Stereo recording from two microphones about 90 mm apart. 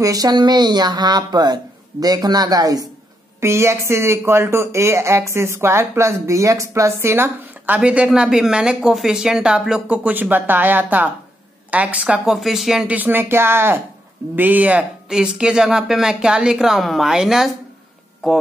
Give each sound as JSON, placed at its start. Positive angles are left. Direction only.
{"t": 0.0, "sound": "speech", "side_deg": -40}
{"t": 3.3, "sound": "speech", "side_deg": -30}
{"t": 10.0, "sound": "speech", "side_deg": -20}
{"t": 12.4, "sound": "speech", "side_deg": 0}
{"t": 12.9, "sound": "speech", "side_deg": -20}